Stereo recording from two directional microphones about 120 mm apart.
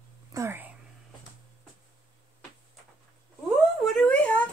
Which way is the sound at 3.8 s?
Centre (ahead or behind).